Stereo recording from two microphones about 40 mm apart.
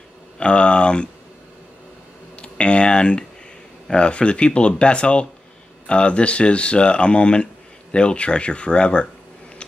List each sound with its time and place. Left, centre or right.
0.4 s speech: left
2.4 s speech: left